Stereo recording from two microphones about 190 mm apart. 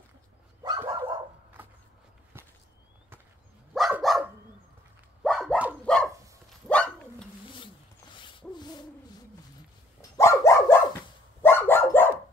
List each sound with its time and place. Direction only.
0.7 s dog: 20° right (ahead or behind)
2.3 s walk: 10° right (ahead or behind)
3.7 s dog: centre (ahead or behind)
8.2 s rub: 25° left (ahead or behind)
10.1 s dog: 15° left (ahead or behind)